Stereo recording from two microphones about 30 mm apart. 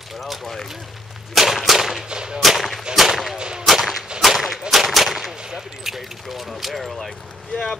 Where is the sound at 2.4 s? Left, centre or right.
Centre.